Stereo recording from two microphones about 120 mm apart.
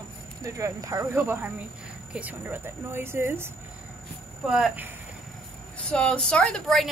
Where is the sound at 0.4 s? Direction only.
25° right (ahead or behind).